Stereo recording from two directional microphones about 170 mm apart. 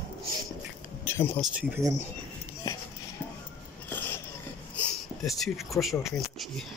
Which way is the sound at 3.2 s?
5° right (ahead or behind).